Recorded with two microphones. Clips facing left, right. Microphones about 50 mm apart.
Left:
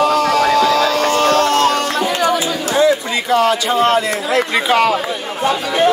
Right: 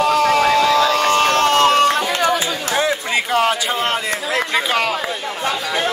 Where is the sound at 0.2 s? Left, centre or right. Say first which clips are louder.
Left 1 dB; right.